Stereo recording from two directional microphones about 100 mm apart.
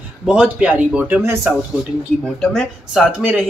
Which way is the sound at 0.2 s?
5° right (ahead or behind).